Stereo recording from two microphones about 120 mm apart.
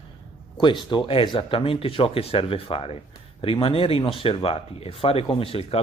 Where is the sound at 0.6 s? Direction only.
40° left (ahead or behind).